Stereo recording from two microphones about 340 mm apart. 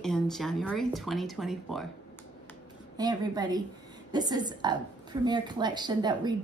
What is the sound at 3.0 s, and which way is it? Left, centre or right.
A woman's voice, centre.